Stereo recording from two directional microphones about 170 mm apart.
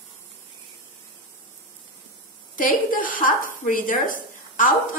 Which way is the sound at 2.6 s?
55° left (ahead or behind).